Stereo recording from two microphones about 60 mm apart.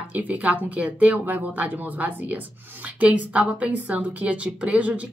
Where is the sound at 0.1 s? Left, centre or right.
Right.